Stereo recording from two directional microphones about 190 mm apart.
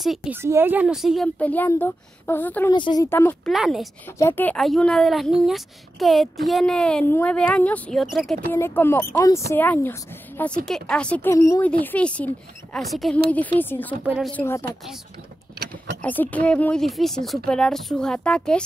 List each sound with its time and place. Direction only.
0.0 s a woman's voice: centre (ahead or behind)
2.7 s speech: 20° left (ahead or behind)
3.1 s speech: 10° left (ahead or behind)
3.5 s a woman's voice: centre (ahead or behind)
4.2 s a woman's voice: 10° left (ahead or behind)
8.5 s speech: 10° left (ahead or behind)
14.0 s a woman's voice: 5° right (ahead or behind)
14.3 s speech: 15° left (ahead or behind)
16.0 s a woman's voice: 10° left (ahead or behind)